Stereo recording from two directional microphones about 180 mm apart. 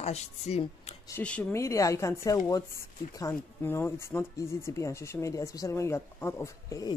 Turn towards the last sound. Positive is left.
turn(degrees=20)  # may be behind; listen again after turning